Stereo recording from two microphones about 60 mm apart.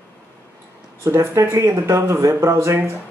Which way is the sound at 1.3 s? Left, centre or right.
Right.